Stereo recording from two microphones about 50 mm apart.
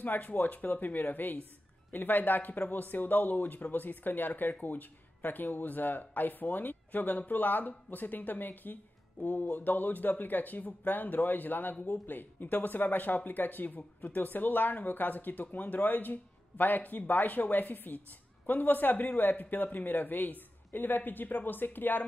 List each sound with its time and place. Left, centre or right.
0.0 s speech: left